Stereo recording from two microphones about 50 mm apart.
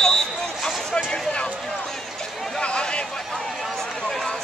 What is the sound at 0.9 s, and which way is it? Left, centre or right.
Vehicle, centre.